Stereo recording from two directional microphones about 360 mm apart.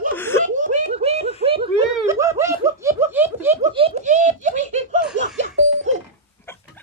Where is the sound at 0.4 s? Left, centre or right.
Centre.